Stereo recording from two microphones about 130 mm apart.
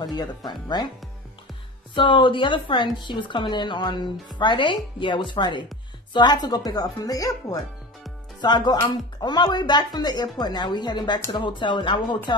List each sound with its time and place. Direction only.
0.0 s a woman's voice: 30° left (ahead or behind)
2.0 s a woman's voice: 40° left (ahead or behind)